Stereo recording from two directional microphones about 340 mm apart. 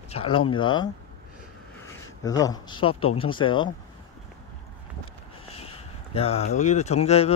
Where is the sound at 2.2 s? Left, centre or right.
Centre.